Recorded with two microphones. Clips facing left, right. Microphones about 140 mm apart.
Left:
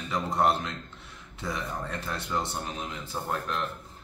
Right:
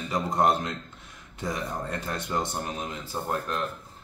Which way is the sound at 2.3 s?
15° right (ahead or behind).